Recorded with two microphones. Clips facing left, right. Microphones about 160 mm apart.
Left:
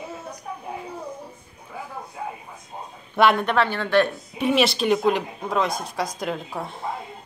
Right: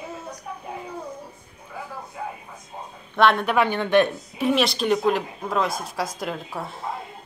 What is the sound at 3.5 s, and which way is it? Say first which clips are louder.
Speech: right 1 dB; 15° right (ahead or behind).